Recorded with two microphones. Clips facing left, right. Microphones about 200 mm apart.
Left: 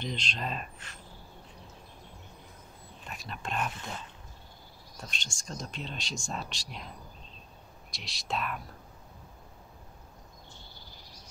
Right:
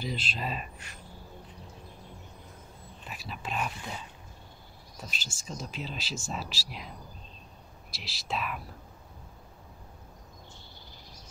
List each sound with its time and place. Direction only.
0.0 s speech: 5° right (ahead or behind)
3.1 s speech: 5° right (ahead or behind)
7.9 s speech: 5° right (ahead or behind)